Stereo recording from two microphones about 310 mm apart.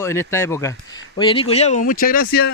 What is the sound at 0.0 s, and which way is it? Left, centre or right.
Speech, centre.